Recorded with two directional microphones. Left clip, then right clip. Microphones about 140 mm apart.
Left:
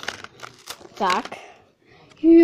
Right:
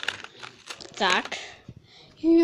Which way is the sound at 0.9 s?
20° left (ahead or behind).